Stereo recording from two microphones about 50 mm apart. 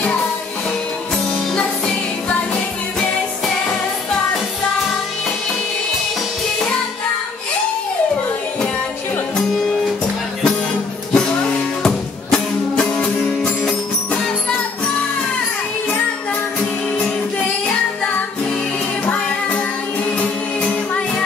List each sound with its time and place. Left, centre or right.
11.1 s music: centre
13.0 s music: centre